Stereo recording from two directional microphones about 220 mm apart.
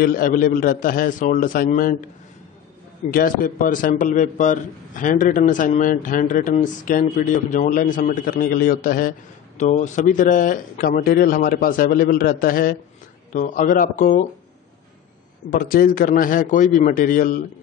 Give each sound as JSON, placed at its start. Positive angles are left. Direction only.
{"t": 0.0, "sound": "a man's voice", "side_deg": 40}
{"t": 3.1, "sound": "a man's voice", "side_deg": 40}
{"t": 15.5, "sound": "a man's voice", "side_deg": 40}